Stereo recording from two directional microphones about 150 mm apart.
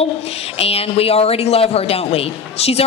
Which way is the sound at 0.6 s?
40° left (ahead or behind).